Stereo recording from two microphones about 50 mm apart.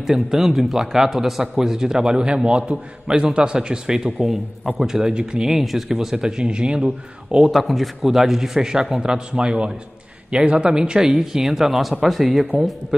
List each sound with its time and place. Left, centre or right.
0.0 s a man's voice: centre
7.5 s a man's voice: centre
12.5 s a man's voice: centre